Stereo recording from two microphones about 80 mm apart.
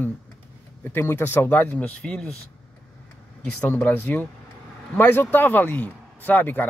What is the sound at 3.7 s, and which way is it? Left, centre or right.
A man's voice, left.